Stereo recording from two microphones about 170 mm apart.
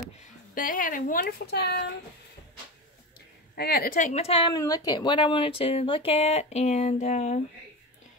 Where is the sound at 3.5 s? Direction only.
65° left (ahead or behind); by 7.4 s 40° left (ahead or behind).